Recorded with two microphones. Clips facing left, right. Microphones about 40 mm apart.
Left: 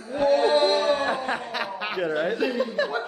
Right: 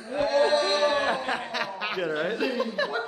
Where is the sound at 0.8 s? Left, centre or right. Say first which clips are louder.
Left 1 dB; right.